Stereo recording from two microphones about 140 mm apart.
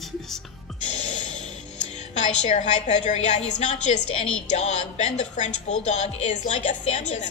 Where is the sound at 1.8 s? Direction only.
55° left (ahead or behind).